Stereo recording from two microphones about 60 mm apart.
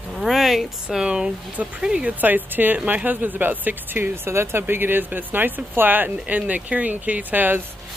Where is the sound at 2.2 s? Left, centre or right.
Right.